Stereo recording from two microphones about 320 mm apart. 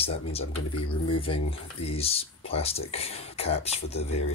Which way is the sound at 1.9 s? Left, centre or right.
Centre.